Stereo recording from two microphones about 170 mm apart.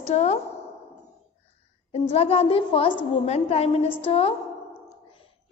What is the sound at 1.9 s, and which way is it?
A woman's voice, 35° left (ahead or behind).